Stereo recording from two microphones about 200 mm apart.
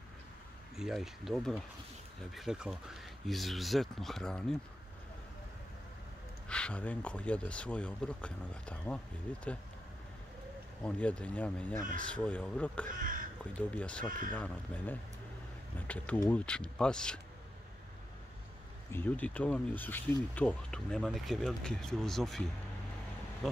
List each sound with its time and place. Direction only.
0.7 s speech: centre (ahead or behind)
6.5 s speech: 5° left (ahead or behind)
10.8 s speech: 5° left (ahead or behind)
13.0 s crow: 45° right (ahead or behind)
13.6 s speech: 5° left (ahead or behind)
18.9 s speech: 10° left (ahead or behind)